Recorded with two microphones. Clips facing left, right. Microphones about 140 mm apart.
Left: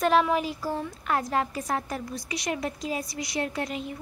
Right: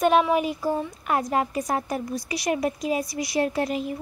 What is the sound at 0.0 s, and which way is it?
A woman's voice, 10° right (ahead or behind).